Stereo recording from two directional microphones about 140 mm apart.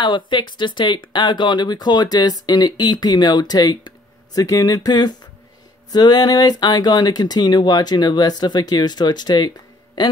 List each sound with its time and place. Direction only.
0.0 s speech: 35° left (ahead or behind)